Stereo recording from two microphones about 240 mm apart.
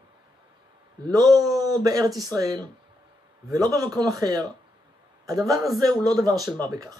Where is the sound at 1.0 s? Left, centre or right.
Centre.